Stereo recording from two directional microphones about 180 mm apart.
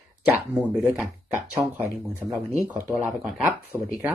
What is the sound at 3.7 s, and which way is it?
Speech, 20° right (ahead or behind).